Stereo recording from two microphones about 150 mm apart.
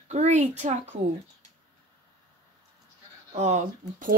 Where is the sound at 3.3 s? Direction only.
50° right (ahead or behind).